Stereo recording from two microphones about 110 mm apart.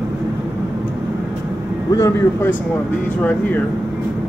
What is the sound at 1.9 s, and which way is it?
Speech, 30° left (ahead or behind).